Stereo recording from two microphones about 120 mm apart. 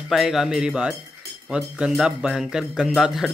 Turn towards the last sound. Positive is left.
turn(degrees=0)  # may be behind; listen again after turning